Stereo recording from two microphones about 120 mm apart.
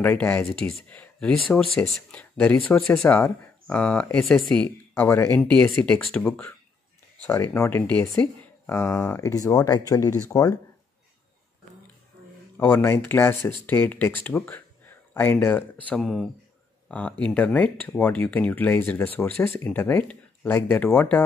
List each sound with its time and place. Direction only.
0.0 s speech: 15° left (ahead or behind)
0.5 s speech: 5° left (ahead or behind)
4.6 s speech: 20° left (ahead or behind)
5.4 s speech: 10° left (ahead or behind)
7.8 s speech: 15° left (ahead or behind); by 10.5 s 30° left (ahead or behind)
12.5 s speech: 20° left (ahead or behind)
16.0 s speech: centre (ahead or behind)